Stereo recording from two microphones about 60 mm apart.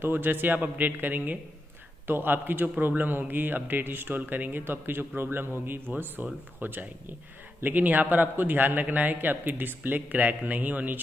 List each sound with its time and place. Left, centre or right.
0.0 s a man's voice: right